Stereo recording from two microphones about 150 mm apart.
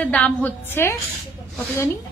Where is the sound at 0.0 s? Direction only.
10° left (ahead or behind).